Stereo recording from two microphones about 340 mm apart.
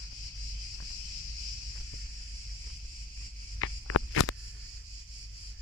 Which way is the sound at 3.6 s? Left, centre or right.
Left.